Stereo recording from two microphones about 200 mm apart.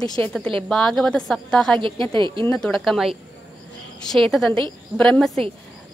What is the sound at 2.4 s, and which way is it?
A woman's voice, 5° left (ahead or behind).